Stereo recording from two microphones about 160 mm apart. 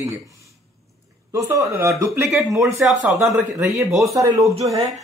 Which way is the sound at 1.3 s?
20° right (ahead or behind).